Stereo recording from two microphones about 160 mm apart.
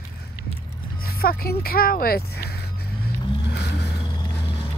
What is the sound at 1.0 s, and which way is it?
Speech, 70° left (ahead or behind).